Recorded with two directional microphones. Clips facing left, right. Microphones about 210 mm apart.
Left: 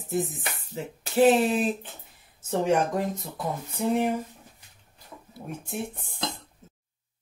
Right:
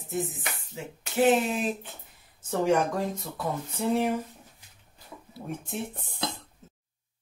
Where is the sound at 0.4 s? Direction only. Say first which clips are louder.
Left 3 dB; 35° left (ahead or behind).